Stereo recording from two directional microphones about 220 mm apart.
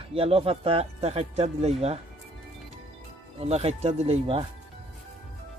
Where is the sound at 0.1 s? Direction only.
25° right (ahead or behind).